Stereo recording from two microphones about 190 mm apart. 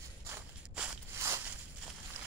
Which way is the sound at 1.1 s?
15° right (ahead or behind).